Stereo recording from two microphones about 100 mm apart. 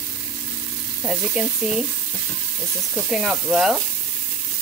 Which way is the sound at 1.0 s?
10° right (ahead or behind).